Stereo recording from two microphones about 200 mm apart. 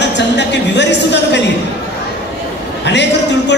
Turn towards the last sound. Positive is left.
turn(degrees=60)  # may be behind; listen again after turning